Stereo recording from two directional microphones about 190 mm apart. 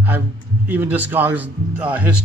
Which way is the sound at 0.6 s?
10° right (ahead or behind).